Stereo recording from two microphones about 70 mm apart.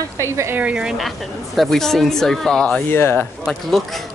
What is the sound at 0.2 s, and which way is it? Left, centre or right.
Speech, right.